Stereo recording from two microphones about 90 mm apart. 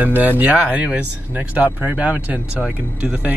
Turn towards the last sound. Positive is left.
turn(degrees=-10)  # may be behind; listen again after turning